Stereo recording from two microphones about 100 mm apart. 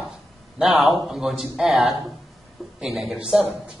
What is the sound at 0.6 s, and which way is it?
A man's voice, 5° right (ahead or behind).